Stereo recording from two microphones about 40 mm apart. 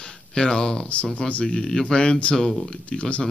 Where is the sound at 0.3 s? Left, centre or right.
Centre.